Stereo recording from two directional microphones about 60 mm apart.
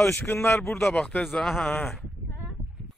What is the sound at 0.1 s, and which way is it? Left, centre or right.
Speech, left.